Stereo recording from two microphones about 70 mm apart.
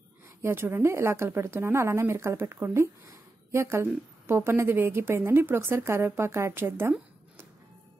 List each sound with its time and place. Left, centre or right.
0.4 s speech: right